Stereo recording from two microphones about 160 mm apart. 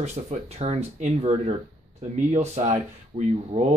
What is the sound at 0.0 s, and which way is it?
Speech, 45° right (ahead or behind).